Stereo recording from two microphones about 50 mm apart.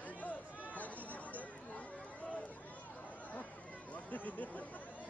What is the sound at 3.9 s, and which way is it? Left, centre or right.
Speech, left.